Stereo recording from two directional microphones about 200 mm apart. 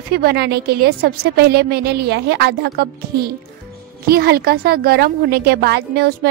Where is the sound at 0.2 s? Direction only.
50° right (ahead or behind).